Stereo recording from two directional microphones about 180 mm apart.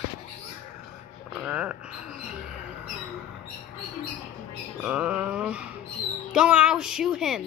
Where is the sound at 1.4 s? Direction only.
10° right (ahead or behind).